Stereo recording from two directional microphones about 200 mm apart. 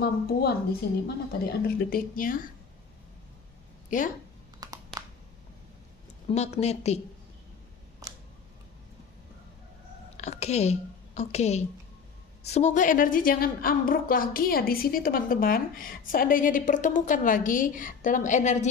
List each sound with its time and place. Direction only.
0.0 s a woman's voice: 50° left (ahead or behind)
4.6 s a sound: 20° right (ahead or behind)
6.2 s a woman's voice: 30° left (ahead or behind)
10.1 s a woman's voice: 35° left (ahead or behind)